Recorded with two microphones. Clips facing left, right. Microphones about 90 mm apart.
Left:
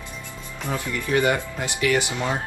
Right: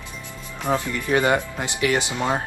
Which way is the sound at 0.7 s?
25° right (ahead or behind).